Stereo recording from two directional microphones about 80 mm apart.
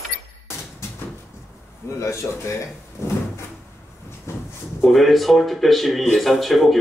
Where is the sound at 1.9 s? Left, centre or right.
Left.